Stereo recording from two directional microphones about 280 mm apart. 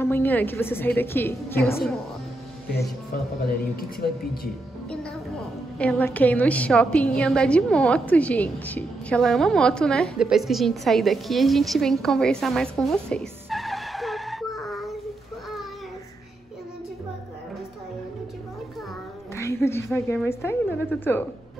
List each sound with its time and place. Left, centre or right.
0.0 s a woman's voice: centre
3.5 s speech: left
5.8 s a woman's voice: centre
19.3 s a sound: centre
19.9 s a woman's voice: centre